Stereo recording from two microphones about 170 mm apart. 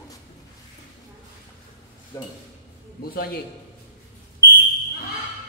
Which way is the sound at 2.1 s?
20° left (ahead or behind).